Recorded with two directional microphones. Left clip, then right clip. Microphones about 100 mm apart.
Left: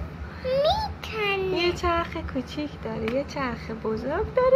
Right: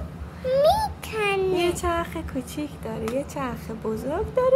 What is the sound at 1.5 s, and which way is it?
A woman's voice, 5° right (ahead or behind).